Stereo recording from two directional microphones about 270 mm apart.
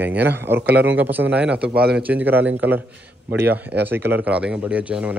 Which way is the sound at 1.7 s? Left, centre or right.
Right.